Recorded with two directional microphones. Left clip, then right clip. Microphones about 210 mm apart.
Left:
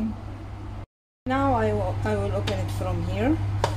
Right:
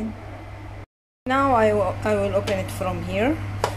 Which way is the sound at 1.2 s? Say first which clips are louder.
Right 5 dB; 20° right (ahead or behind).